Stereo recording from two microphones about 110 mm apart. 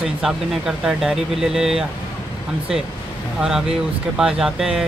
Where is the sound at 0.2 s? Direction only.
5° right (ahead or behind).